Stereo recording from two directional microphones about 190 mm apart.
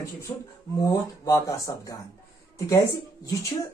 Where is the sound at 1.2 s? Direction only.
15° left (ahead or behind).